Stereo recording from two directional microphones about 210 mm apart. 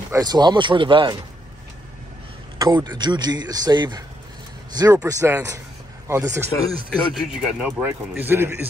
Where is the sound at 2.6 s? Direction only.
20° right (ahead or behind).